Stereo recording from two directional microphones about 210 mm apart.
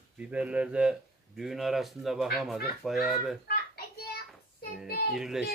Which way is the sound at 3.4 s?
50° left (ahead or behind).